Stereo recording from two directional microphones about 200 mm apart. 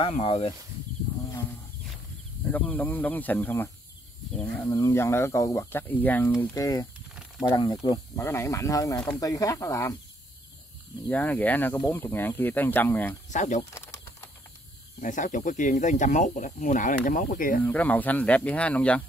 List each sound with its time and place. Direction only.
0.0 s speech: 30° left (ahead or behind)
2.4 s speech: 10° left (ahead or behind)
11.1 s speech: 10° left (ahead or behind)
13.3 s speech: 40° left (ahead or behind)
15.0 s speech: 40° left (ahead or behind)
17.6 s speech: 10° left (ahead or behind)